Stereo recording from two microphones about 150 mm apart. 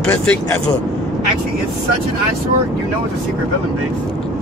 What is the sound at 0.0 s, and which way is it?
Speech, 10° left (ahead or behind).